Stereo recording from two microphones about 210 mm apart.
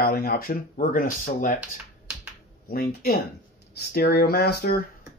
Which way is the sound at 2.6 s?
45° left (ahead or behind).